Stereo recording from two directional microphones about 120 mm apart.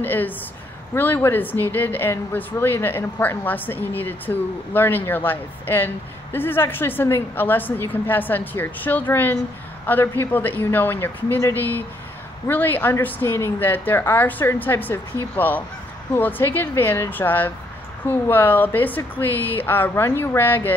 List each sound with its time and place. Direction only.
0.0 s a woman's voice: 15° left (ahead or behind)